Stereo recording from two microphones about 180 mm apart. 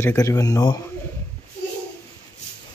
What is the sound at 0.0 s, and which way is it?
Speech, 20° left (ahead or behind).